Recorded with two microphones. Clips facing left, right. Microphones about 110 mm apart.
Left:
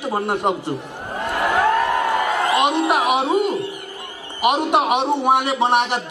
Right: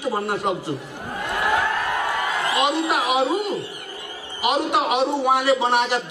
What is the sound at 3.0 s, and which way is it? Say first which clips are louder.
Speech: left 2 dB; 20° left (ahead or behind).